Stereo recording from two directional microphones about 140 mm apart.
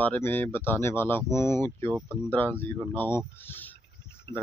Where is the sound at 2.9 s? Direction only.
15° left (ahead or behind).